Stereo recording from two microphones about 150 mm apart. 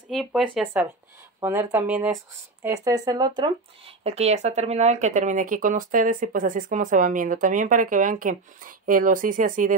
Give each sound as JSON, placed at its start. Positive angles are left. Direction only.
{"t": 0.1, "sound": "speech", "side_deg": 0}
{"t": 1.4, "sound": "speech", "side_deg": -15}